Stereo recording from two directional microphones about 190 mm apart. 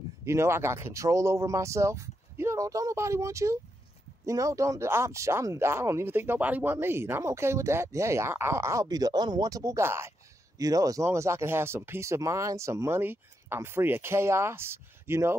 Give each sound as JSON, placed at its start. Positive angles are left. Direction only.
{"t": 0.2, "sound": "speech", "side_deg": -15}